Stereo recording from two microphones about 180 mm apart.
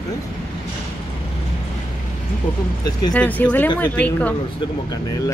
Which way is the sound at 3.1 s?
10° left (ahead or behind).